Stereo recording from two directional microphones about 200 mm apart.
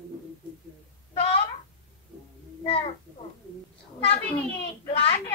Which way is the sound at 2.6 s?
30° left (ahead or behind).